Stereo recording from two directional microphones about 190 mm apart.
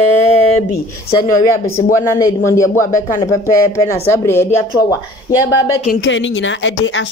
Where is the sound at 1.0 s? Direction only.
20° left (ahead or behind).